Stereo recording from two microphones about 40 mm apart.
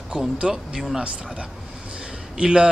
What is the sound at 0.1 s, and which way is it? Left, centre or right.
Speech, right.